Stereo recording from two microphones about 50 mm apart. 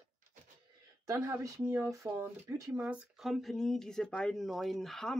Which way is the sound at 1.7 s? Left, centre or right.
Right.